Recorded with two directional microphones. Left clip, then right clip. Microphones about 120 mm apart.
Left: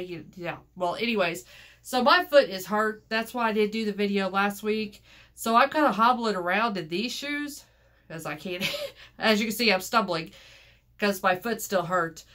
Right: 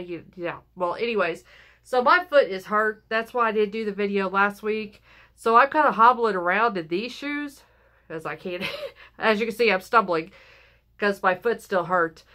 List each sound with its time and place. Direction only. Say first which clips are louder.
0.1 s speech: right 4 dB; 35° right (ahead or behind)